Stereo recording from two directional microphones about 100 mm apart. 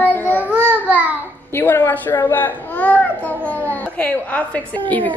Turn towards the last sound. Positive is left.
turn(degrees=15)  # may be behind; listen again after turning